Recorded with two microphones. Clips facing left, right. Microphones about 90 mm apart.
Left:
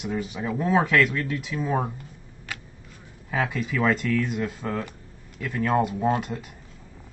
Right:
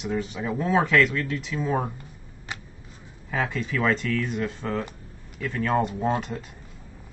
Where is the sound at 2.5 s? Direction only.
25° right (ahead or behind).